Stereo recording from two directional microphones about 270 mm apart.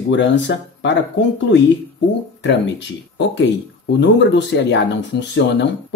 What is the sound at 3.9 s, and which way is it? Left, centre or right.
Speech, left.